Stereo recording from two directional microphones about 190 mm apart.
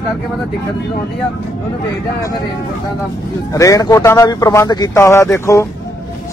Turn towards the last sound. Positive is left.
turn(degrees=15)  # may be behind; listen again after turning